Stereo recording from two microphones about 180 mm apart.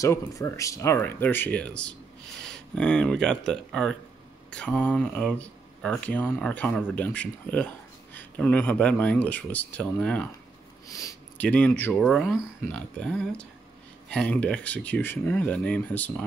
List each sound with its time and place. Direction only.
0.0 s speech: 15° left (ahead or behind)
10.9 s a sound: 20° left (ahead or behind)
11.4 s speech: 10° left (ahead or behind)